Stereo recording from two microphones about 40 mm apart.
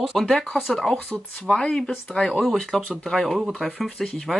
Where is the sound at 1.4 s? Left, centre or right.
Centre.